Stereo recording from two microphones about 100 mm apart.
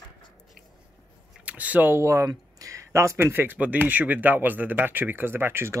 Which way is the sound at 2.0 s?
35° right (ahead or behind).